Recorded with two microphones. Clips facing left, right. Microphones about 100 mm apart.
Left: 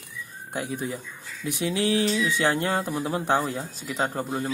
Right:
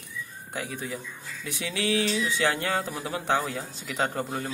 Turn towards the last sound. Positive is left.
turn(degrees=5)  # may be behind; listen again after turning